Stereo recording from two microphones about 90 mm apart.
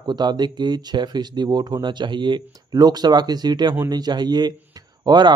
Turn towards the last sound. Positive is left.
turn(degrees=-55)  # may be behind; listen again after turning